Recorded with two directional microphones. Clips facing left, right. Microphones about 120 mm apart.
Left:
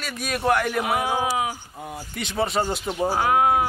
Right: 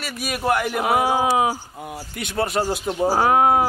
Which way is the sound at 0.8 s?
30° right (ahead or behind).